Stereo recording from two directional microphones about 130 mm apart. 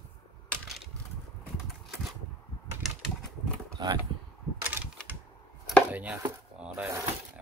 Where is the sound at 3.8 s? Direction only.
35° right (ahead or behind).